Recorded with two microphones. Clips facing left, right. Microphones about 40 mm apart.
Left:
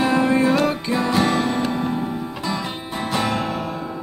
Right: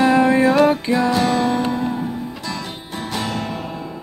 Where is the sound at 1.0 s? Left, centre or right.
Centre.